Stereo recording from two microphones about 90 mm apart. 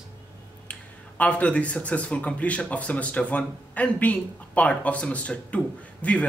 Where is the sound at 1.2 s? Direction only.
15° left (ahead or behind).